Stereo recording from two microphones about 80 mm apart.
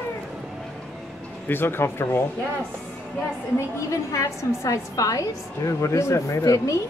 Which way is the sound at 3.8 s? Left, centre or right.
Left.